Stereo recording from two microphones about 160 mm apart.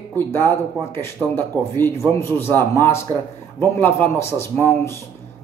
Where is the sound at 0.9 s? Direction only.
15° left (ahead or behind).